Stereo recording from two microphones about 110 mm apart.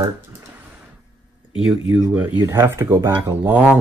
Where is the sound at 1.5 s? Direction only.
5° right (ahead or behind).